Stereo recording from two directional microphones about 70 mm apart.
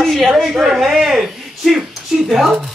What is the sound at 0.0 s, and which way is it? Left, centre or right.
Speech, centre.